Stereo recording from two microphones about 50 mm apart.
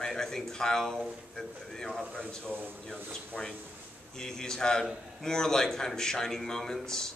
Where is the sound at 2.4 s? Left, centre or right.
Right.